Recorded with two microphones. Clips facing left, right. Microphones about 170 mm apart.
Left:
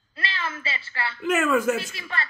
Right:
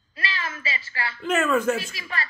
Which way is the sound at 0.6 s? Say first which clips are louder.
Even; 30° left (ahead or behind).